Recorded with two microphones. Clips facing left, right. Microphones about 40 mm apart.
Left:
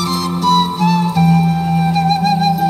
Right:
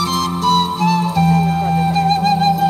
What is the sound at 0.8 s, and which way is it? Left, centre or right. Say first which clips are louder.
Music: left 1 dB; left.